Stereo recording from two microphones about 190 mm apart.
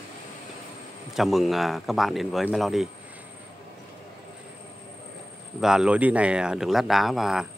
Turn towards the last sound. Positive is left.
turn(degrees=0)  # may be behind; listen again after turning